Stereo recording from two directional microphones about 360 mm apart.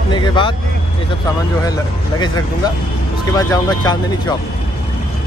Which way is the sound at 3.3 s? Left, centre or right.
Centre.